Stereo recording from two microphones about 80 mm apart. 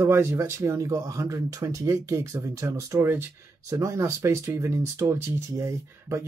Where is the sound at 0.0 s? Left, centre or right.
Right.